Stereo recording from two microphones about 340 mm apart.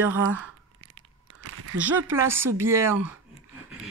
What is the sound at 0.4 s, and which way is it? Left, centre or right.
Chewing, right.